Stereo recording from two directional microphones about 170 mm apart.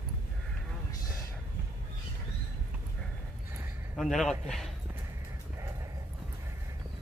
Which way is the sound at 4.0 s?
Centre (ahead or behind).